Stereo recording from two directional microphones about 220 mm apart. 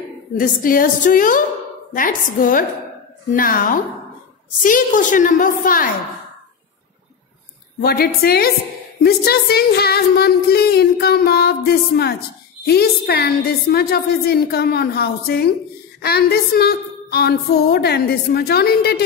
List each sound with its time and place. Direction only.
0.4 s a woman's voice: 40° left (ahead or behind)
7.8 s speech: 45° left (ahead or behind)